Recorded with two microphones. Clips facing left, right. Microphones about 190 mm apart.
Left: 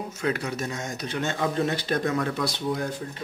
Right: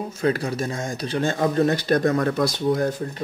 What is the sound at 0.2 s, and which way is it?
Speech, 35° right (ahead or behind).